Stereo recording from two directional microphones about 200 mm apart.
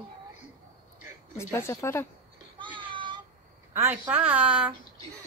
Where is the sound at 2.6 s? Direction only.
25° right (ahead or behind).